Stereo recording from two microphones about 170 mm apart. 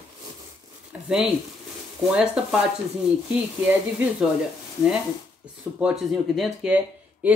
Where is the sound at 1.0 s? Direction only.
5° right (ahead or behind).